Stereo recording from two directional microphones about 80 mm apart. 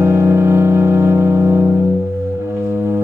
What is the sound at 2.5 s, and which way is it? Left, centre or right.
Music, right.